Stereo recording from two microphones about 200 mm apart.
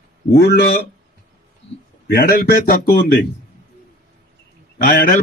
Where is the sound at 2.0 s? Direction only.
50° left (ahead or behind).